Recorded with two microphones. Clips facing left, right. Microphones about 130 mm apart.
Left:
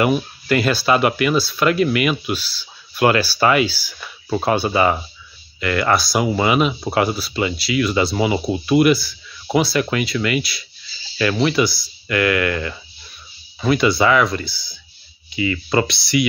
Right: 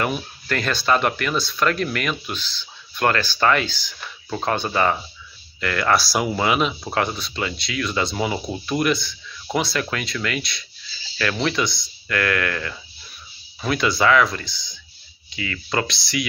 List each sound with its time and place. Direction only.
0.0 s speech: 10° left (ahead or behind)